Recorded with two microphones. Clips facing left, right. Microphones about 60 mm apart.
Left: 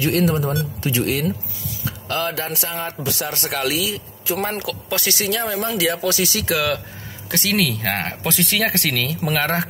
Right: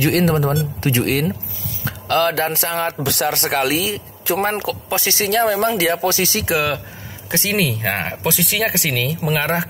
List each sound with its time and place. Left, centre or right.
0.0 s a man's voice: right
1.9 s a man's voice: right
3.6 s speech: right
5.2 s speech: right
5.7 s speech: right; by 8.2 s centre
8.2 s speech: centre